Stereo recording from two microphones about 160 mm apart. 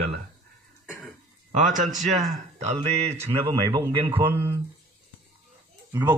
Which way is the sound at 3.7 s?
30° right (ahead or behind).